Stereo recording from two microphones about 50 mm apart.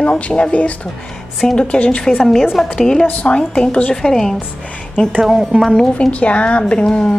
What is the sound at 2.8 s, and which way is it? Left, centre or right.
A woman's voice, centre.